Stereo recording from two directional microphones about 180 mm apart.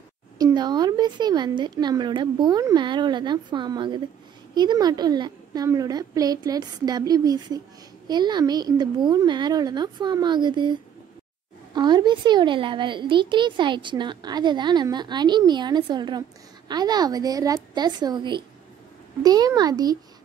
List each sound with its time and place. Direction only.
0.4 s a child's voice: 20° right (ahead or behind)